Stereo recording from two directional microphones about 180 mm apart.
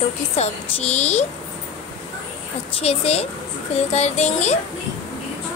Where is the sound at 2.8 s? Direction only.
35° left (ahead or behind).